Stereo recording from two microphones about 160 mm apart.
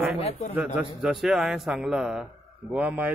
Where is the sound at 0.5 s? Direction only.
5° right (ahead or behind).